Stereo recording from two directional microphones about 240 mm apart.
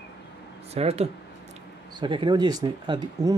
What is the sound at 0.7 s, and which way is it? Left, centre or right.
Speech, right.